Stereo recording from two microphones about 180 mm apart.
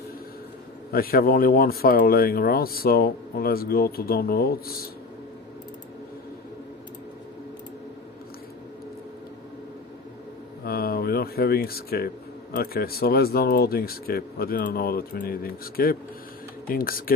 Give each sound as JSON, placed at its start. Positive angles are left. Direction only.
{"t": 0.9, "sound": "speech", "side_deg": 55}
{"t": 10.6, "sound": "a sound", "side_deg": 55}
{"t": 12.5, "sound": "speech", "side_deg": 55}